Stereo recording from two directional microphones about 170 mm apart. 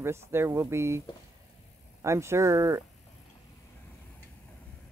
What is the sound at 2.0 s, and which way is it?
Speech, 15° right (ahead or behind).